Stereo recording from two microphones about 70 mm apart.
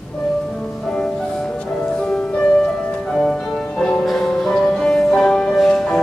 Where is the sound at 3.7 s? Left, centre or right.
Centre.